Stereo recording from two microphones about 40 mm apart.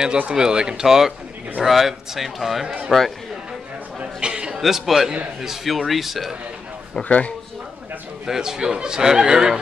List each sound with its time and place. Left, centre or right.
0.3 s a man's voice: right
4.0 s a sound: right
4.6 s a man's voice: centre
7.0 s a man's voice: left
8.3 s a man's voice: centre